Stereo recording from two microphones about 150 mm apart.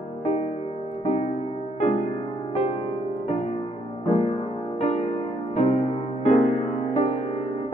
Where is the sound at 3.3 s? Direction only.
45° left (ahead or behind).